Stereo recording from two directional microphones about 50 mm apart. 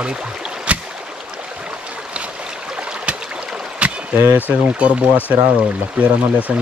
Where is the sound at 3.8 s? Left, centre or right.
Right.